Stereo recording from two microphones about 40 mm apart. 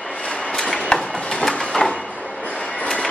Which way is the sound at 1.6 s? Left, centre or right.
Centre.